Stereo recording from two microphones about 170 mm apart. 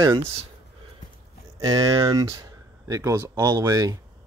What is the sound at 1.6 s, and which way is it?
Speech, 20° right (ahead or behind).